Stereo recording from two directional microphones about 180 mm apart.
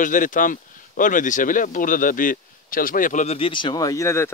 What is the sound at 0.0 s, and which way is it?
Speech, 45° left (ahead or behind).